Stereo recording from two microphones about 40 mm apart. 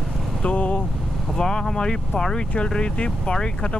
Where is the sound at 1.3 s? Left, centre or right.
Centre.